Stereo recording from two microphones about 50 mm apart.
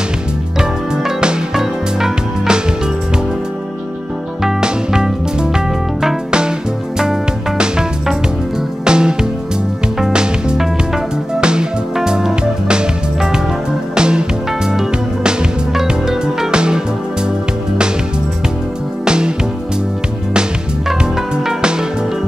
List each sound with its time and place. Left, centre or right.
0.6 s music: centre
4.4 s music: centre
7.0 s music: centre
13.9 s music: centre
16.5 s music: centre
19.0 s music: centre